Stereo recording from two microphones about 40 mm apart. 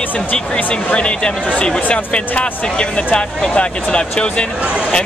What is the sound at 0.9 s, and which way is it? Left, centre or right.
Speech, left.